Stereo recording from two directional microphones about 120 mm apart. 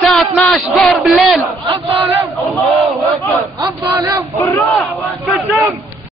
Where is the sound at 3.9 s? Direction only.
25° right (ahead or behind).